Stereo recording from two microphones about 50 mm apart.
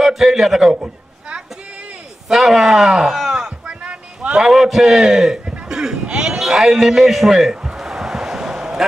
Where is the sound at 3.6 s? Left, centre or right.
Right.